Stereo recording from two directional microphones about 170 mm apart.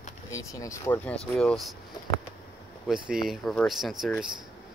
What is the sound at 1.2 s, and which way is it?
Speech, 5° left (ahead or behind).